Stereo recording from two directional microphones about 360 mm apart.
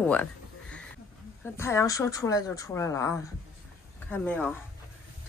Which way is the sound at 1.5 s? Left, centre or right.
Centre.